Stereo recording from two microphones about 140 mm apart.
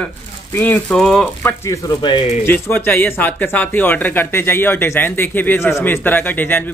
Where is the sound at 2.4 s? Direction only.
15° left (ahead or behind).